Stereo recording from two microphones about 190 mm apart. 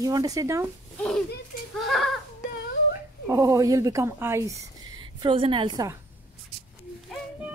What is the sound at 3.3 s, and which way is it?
Speech, 15° right (ahead or behind).